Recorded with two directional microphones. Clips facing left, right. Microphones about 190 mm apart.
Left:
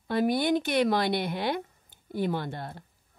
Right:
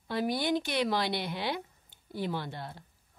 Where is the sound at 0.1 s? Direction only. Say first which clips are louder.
Left 5 dB; 55° left (ahead or behind).